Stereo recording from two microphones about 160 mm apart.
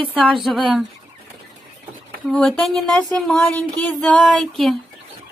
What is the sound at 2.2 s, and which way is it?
Speech, 5° left (ahead or behind).